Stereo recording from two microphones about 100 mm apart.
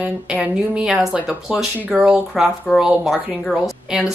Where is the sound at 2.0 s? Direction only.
5° right (ahead or behind).